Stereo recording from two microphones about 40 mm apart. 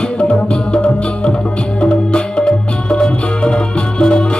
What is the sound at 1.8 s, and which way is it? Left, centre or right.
Music, left.